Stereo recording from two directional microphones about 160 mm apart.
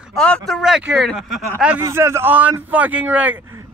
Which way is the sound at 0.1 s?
5° left (ahead or behind).